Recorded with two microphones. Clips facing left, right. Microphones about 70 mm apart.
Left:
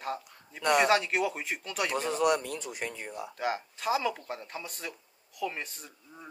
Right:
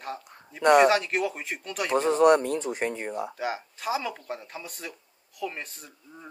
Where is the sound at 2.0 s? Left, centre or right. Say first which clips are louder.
Right 9 dB; right.